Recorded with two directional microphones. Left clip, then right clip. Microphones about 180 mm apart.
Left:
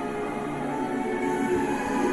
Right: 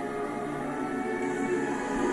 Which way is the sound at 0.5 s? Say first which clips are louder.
Left 3 dB; 25° right (ahead or behind).